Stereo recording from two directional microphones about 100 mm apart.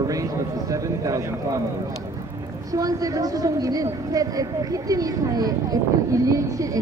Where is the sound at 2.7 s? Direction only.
35° right (ahead or behind).